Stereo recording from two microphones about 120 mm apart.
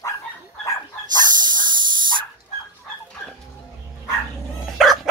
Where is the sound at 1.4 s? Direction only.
40° right (ahead or behind).